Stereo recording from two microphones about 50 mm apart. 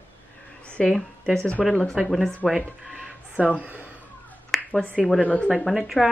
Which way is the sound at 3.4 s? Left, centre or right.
Right.